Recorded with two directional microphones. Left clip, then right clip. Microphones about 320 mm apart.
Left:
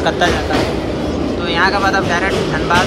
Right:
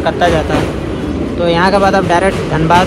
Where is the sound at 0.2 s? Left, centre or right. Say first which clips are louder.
Right 4 dB; centre.